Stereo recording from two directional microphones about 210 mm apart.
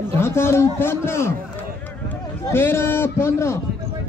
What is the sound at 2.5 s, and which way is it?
A man's voice, 10° left (ahead or behind).